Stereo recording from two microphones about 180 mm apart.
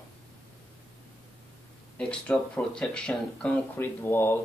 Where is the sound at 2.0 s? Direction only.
5° left (ahead or behind).